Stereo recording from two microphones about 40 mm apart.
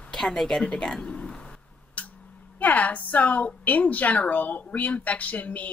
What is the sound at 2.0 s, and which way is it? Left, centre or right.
Music, left.